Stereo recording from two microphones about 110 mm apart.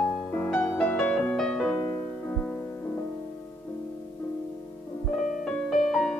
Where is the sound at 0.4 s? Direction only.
15° left (ahead or behind).